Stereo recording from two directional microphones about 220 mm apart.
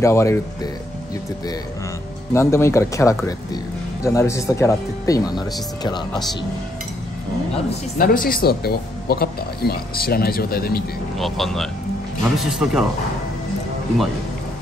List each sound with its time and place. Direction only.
0.0 s speech: 15° left (ahead or behind)
2.3 s speech: 10° left (ahead or behind)
8.0 s speech: 40° left (ahead or behind)
11.1 s speech: centre (ahead or behind)